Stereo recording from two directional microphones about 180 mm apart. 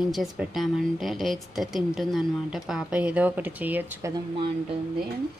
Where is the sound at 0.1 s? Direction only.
Centre (ahead or behind).